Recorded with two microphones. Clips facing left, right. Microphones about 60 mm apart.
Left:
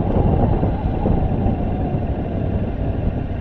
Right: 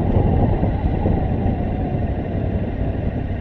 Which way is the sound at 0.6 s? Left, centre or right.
Left.